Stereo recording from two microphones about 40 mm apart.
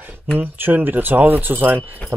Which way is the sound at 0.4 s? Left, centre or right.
Right.